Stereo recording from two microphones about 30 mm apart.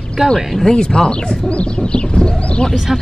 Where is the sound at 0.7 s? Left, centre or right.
Left.